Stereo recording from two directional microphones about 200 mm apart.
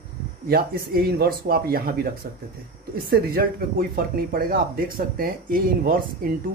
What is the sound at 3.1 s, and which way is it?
Speech, 50° right (ahead or behind).